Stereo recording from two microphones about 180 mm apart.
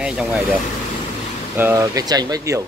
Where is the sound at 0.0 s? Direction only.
5° right (ahead or behind).